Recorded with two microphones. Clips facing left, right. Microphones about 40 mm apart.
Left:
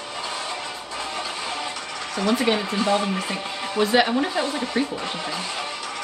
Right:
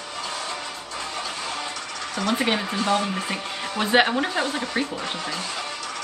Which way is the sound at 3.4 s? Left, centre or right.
Centre.